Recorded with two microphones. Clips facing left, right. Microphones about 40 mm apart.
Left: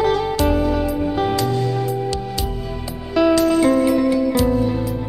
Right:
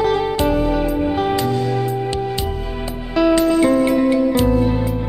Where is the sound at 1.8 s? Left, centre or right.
Right.